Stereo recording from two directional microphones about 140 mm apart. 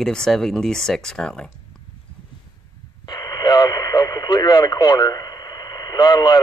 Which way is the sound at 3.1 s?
25° left (ahead or behind).